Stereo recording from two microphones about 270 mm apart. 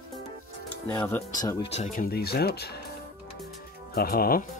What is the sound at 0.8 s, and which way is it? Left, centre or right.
Speech, centre.